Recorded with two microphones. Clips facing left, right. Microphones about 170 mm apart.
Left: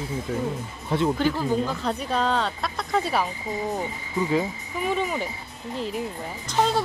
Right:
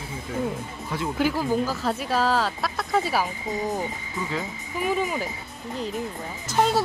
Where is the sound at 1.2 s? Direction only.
5° right (ahead or behind).